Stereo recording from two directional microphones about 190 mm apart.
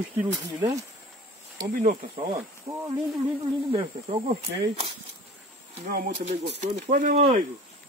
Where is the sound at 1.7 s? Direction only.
45° right (ahead or behind).